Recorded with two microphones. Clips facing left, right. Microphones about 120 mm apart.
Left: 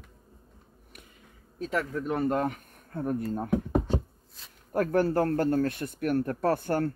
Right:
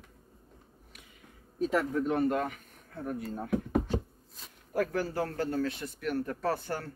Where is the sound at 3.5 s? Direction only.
25° left (ahead or behind).